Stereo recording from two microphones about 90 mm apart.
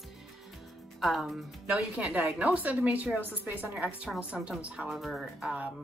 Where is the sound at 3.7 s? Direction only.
10° right (ahead or behind).